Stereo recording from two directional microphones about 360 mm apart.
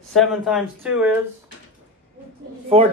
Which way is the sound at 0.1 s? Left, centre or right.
Centre.